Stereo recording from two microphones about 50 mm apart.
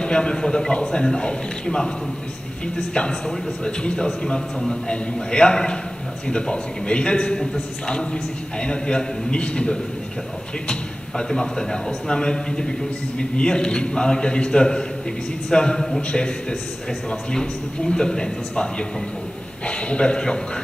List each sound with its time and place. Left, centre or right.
0.0 s a man's voice: centre
2.9 s a man's voice: centre